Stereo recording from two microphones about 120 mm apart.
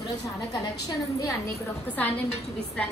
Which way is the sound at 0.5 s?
30° left (ahead or behind).